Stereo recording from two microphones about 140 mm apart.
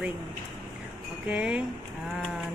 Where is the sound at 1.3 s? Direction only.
5° right (ahead or behind).